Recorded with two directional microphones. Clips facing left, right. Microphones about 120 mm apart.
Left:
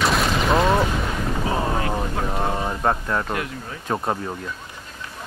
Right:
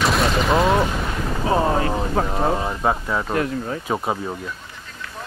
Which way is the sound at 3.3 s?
35° right (ahead or behind).